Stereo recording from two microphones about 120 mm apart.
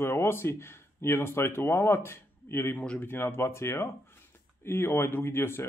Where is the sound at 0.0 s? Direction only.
20° left (ahead or behind).